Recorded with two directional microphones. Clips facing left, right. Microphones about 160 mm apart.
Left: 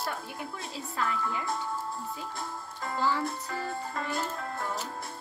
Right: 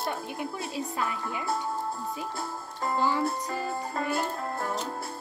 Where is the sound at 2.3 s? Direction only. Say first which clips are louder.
Right 3 dB; 35° right (ahead or behind).